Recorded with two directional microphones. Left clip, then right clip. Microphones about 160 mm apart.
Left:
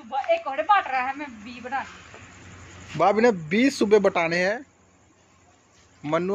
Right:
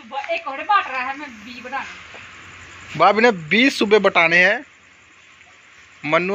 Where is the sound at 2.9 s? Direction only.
5° left (ahead or behind).